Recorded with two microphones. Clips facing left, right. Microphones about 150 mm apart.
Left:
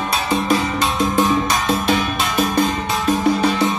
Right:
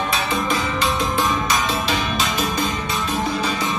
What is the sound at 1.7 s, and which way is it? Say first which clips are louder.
Music: left 4 dB; 55° left (ahead or behind).